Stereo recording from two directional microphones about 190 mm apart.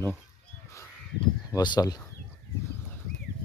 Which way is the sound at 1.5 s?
20° left (ahead or behind).